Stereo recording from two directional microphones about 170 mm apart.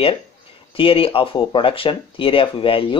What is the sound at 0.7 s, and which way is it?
Speech, 35° left (ahead or behind).